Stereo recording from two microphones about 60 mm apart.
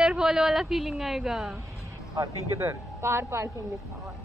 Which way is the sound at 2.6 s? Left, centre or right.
Right.